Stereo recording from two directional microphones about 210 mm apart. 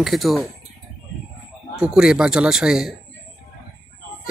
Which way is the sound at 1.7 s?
5° right (ahead or behind).